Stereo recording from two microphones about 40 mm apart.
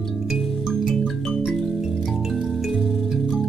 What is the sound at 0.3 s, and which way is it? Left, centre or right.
Music, centre.